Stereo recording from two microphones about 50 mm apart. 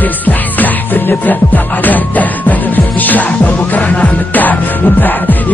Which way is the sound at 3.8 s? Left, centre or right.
Left.